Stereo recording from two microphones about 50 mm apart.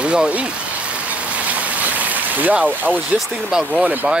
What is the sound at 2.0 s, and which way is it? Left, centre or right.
Rain, right.